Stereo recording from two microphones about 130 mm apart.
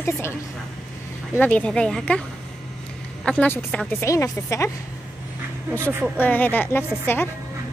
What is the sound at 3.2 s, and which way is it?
Speech, 10° left (ahead or behind).